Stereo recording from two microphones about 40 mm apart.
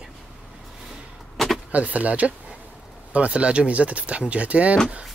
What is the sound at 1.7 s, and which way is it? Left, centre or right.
Speech, right.